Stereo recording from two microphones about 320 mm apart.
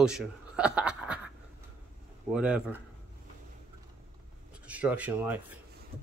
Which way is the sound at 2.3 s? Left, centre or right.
Centre.